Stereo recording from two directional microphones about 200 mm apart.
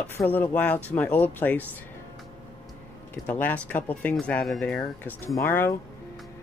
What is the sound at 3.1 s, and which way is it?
Speech, 10° left (ahead or behind).